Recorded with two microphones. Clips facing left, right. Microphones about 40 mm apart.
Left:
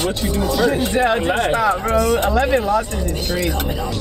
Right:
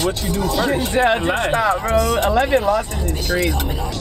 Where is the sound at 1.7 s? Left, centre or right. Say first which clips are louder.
Even; centre.